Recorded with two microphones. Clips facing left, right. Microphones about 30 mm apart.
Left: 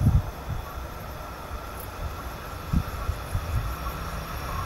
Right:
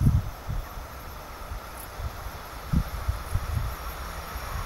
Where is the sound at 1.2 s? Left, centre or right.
Centre.